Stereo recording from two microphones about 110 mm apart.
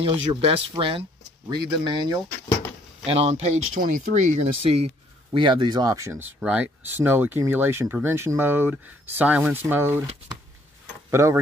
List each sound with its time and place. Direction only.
0.0 s speech: 60° right (ahead or behind)
1.5 s speech: 40° right (ahead or behind)
3.1 s speech: 70° right (ahead or behind); by 10.0 s 20° right (ahead or behind)
11.1 s speech: 25° right (ahead or behind)